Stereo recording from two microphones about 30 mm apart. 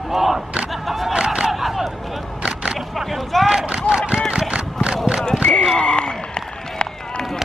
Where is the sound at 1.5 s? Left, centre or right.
Centre.